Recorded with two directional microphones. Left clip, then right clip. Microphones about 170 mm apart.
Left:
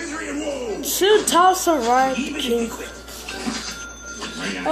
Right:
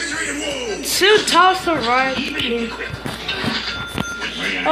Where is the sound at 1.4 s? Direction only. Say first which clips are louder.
Right 1 dB; 20° left (ahead or behind).